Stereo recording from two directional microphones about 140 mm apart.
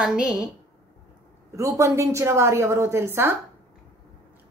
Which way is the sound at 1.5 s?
20° right (ahead or behind).